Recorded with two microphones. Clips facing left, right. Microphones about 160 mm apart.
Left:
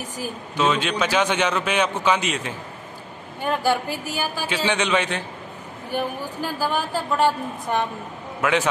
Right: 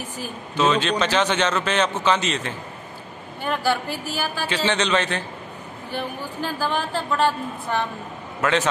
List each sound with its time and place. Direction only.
0.2 s a man's voice: 10° left (ahead or behind)